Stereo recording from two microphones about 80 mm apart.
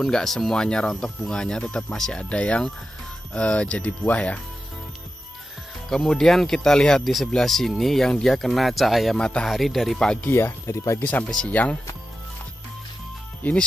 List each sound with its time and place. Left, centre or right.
0.0 s speech: centre
5.9 s speech: centre
10.3 s speech: left
11.2 s speech: centre
13.4 s speech: centre